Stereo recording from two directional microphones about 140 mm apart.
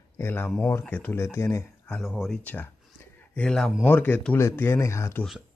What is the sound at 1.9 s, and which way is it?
Speech, 5° right (ahead or behind).